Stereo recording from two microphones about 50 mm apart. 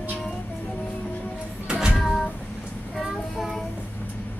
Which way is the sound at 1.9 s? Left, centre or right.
Centre.